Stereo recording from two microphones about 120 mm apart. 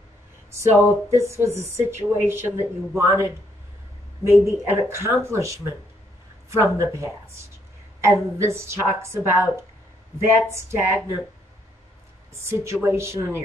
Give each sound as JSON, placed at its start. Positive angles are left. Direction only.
{"t": 0.6, "sound": "a woman's voice", "side_deg": -20}
{"t": 12.4, "sound": "a woman's voice", "side_deg": -25}